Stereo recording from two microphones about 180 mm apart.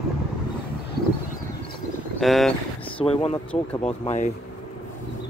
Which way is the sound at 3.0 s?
30° left (ahead or behind).